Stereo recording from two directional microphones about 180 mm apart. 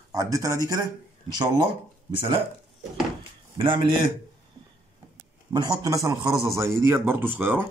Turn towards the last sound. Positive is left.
turn(degrees=-10)  # may be behind; listen again after turning